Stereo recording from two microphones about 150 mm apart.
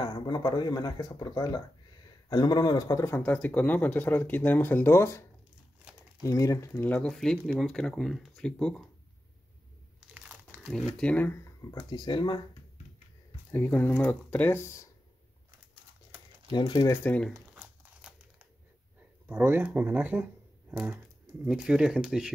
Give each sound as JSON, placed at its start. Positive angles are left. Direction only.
{"t": 0.0, "sound": "speech", "side_deg": 25}
{"t": 6.2, "sound": "speech", "side_deg": 20}
{"t": 6.7, "sound": "speech", "side_deg": 10}
{"t": 9.9, "sound": "crumpling", "side_deg": -10}
{"t": 10.6, "sound": "speech", "side_deg": 0}
{"t": 13.5, "sound": "speech", "side_deg": 15}
{"t": 16.5, "sound": "speech", "side_deg": 30}
{"t": 16.9, "sound": "speech", "side_deg": 10}
{"t": 17.3, "sound": "crumpling", "side_deg": -15}
{"t": 19.2, "sound": "speech", "side_deg": -15}